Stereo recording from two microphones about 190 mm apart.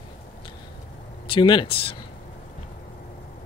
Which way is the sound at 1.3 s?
25° left (ahead or behind).